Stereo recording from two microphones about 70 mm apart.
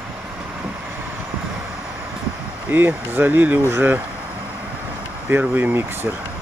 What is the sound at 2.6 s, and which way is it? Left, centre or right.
Speech, right.